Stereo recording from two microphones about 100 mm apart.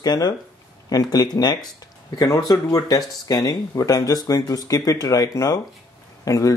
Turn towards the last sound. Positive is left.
turn(degrees=35)  # may be behind; listen again after turning